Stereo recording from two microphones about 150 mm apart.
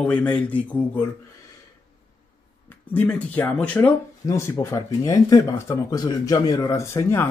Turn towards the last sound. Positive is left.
turn(degrees=20)  # may be behind; listen again after turning